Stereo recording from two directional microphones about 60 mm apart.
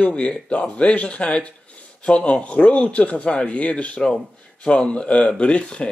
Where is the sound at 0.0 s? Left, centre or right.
Centre.